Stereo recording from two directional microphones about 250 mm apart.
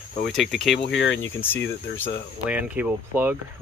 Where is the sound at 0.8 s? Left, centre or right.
Left.